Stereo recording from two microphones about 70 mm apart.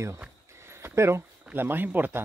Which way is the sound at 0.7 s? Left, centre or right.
Right.